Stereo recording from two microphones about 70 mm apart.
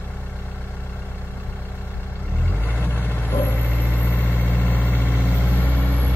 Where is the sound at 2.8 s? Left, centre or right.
Left.